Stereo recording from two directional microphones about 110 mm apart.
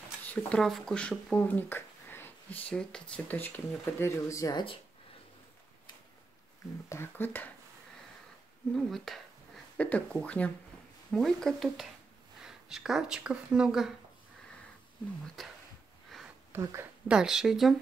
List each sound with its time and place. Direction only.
0.5 s speech: 5° left (ahead or behind); by 2.6 s 20° left (ahead or behind)
2.7 s speech: 5° left (ahead or behind); by 4.6 s 35° left (ahead or behind)
6.9 s speech: 20° left (ahead or behind)
8.7 s speech: centre (ahead or behind)
9.8 s speech: 10° left (ahead or behind); by 13.9 s 5° right (ahead or behind)
15.2 s speech: centre (ahead or behind)
16.5 s speech: 20° right (ahead or behind)
17.1 s speech: 5° right (ahead or behind)